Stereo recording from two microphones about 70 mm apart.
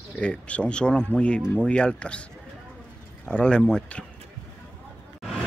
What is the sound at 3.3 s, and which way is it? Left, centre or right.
Speech, centre.